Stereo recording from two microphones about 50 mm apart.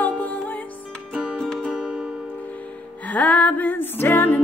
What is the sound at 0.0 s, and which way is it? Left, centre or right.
Music, left.